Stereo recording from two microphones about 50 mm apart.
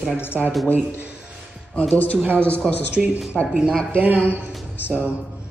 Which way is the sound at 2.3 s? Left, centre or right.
Left.